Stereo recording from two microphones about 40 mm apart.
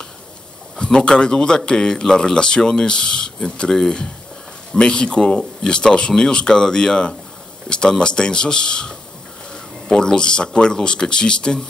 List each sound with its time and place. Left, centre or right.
0.9 s speech: left
4.7 s speech: left